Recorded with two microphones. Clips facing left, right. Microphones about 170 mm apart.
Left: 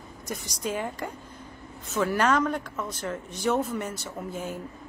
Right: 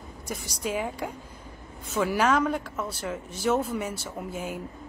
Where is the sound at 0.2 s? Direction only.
10° right (ahead or behind).